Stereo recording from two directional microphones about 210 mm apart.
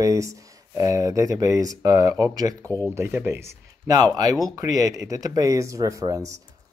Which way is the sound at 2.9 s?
10° right (ahead or behind).